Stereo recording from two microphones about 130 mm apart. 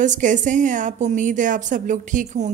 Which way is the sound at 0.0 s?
75° right (ahead or behind).